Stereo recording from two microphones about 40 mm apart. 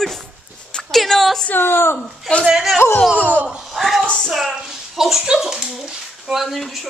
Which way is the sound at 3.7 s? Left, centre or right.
Centre.